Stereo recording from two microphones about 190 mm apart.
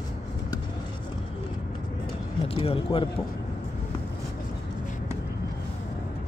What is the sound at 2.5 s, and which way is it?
Speech, 30° left (ahead or behind).